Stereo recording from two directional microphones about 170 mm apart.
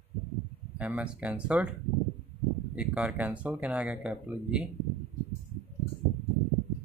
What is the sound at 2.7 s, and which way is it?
Speech, 5° right (ahead or behind).